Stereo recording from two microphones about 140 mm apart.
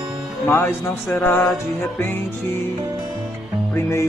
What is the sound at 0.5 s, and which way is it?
Speech, 15° left (ahead or behind).